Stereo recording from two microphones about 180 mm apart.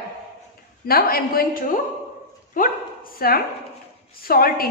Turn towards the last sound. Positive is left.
turn(degrees=55)  # may be behind; listen again after turning